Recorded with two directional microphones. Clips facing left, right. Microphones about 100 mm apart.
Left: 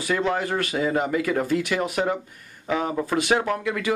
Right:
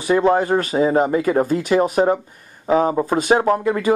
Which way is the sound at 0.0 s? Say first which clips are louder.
Right 8 dB; 30° right (ahead or behind).